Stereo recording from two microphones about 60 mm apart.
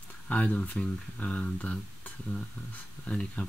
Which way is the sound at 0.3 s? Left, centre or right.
Left.